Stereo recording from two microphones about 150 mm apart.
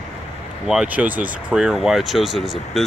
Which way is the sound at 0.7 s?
5° right (ahead or behind).